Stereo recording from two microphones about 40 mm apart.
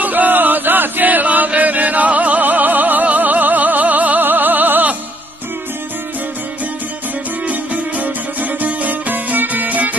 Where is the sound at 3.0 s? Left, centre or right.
Right.